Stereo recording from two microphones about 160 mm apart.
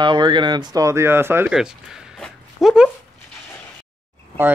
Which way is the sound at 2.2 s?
Centre (ahead or behind).